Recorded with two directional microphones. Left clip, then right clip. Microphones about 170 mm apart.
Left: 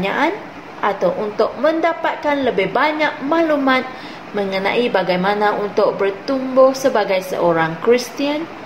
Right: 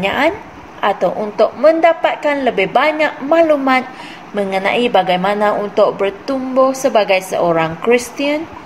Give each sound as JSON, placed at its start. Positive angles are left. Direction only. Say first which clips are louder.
{"t": 0.0, "sound": "a woman's voice", "louder": "right 3 dB", "side_deg": -50}